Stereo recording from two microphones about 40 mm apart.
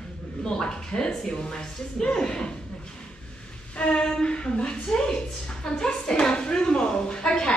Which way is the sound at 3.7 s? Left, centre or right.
Left.